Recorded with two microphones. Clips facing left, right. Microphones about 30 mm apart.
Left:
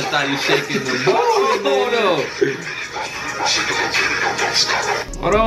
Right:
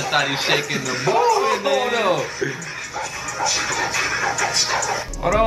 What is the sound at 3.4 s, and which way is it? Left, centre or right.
Speech, left.